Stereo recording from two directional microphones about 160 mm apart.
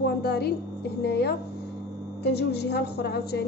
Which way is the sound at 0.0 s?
85° left.